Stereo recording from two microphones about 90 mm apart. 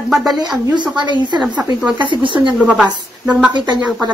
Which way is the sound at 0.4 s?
50° right (ahead or behind).